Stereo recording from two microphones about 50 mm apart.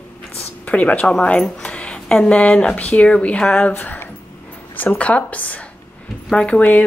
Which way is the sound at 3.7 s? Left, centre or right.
Left.